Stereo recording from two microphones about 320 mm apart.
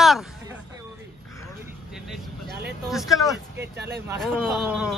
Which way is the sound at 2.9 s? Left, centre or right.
Centre.